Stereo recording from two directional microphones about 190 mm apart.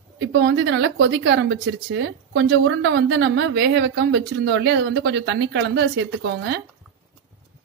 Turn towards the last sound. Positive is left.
turn(degrees=-70)  # may be behind; listen again after turning